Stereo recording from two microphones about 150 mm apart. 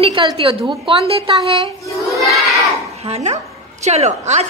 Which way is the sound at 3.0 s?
45° right (ahead or behind).